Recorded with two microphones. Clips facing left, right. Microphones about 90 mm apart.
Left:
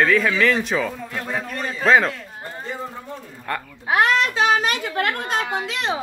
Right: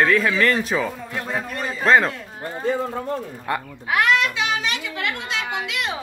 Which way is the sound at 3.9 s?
30° left (ahead or behind).